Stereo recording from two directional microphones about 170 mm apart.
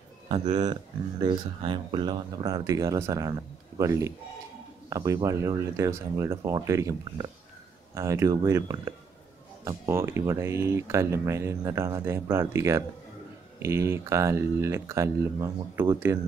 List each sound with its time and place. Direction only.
0.3 s speech: 25° right (ahead or behind)